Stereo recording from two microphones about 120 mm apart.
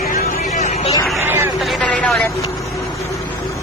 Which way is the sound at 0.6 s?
60° left (ahead or behind).